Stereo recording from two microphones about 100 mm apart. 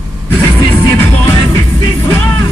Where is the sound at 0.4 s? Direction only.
25° left (ahead or behind).